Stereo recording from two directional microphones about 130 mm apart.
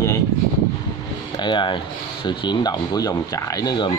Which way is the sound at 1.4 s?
35° left (ahead or behind).